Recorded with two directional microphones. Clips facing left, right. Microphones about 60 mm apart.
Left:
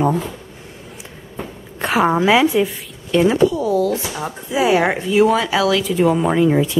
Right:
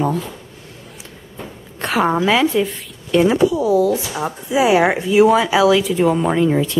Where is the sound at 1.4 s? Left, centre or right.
Centre.